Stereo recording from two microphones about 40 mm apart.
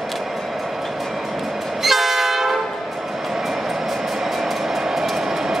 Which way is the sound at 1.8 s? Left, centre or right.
Centre.